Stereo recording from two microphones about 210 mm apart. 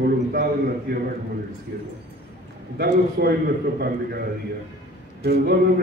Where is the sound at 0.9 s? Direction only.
50° right (ahead or behind).